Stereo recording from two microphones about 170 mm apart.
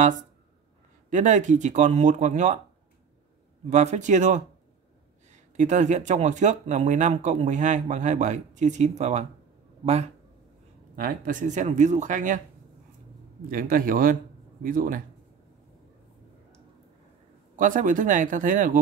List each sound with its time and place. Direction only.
1.1 s speech: 45° right (ahead or behind)
3.7 s speech: 45° right (ahead or behind)
11.0 s speech: 50° right (ahead or behind)
13.5 s speech: 55° right (ahead or behind)
17.6 s speech: 50° right (ahead or behind)